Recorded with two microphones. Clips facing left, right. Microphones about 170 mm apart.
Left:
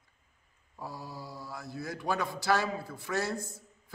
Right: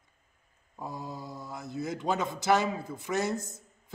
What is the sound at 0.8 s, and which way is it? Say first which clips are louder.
Mantra: right 3 dB; 20° right (ahead or behind).